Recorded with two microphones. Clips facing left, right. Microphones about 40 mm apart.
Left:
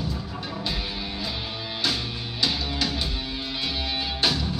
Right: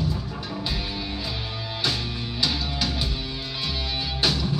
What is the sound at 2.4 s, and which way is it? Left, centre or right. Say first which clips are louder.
Music: left 1 dB; centre.